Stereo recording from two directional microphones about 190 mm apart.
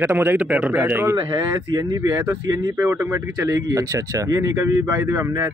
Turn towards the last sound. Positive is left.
turn(degrees=-15)  # may be behind; listen again after turning